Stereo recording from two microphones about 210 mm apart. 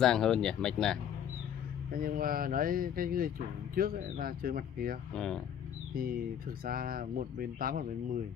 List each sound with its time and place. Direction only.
0.0 s speech: centre (ahead or behind)
1.9 s speech: 45° right (ahead or behind)
5.1 s speech: 5° left (ahead or behind)
6.6 s speech: 45° right (ahead or behind)